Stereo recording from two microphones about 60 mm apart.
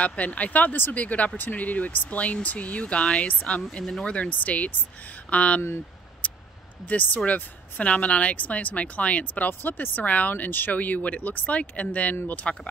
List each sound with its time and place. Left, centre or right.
0.0 s speech: left
6.2 s a sound: left
6.9 s speech: left